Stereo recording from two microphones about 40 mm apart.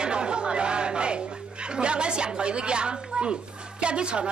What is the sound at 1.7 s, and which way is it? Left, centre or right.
A woman's voice, right.